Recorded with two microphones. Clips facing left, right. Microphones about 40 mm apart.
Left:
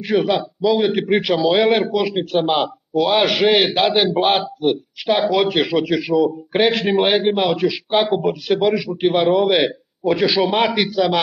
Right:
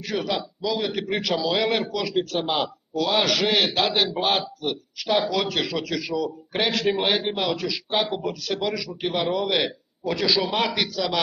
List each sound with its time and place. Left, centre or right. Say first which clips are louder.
0.0 s a man's voice: left 9 dB; left